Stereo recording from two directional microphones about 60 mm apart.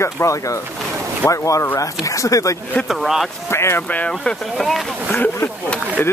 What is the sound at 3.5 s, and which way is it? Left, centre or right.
Speech, left.